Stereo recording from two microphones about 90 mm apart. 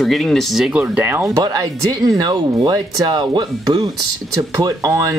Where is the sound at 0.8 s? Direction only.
20° right (ahead or behind).